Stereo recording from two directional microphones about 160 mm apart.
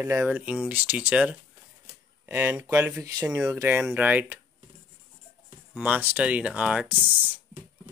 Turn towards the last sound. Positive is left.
turn(degrees=-10)  # may be behind; listen again after turning